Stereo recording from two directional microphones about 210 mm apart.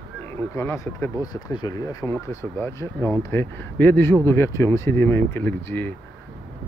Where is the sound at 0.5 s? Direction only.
15° left (ahead or behind).